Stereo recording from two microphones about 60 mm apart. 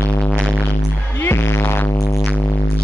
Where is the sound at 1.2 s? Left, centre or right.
Left.